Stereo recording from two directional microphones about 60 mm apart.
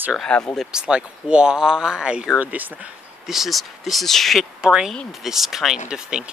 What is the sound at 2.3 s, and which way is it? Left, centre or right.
Speech, right.